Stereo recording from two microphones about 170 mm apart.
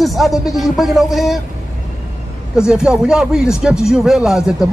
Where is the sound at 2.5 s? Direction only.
5° right (ahead or behind).